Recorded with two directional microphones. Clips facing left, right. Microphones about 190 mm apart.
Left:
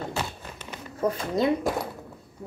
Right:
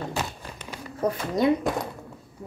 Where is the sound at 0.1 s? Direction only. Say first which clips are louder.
Right 1 dB; 15° right (ahead or behind).